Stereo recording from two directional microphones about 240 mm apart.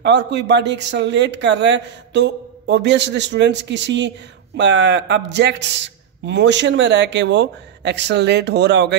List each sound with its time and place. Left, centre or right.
0.0 s speech: right